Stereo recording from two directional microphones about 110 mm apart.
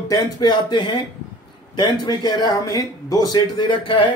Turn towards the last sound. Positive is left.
turn(degrees=50)  # may be behind; listen again after turning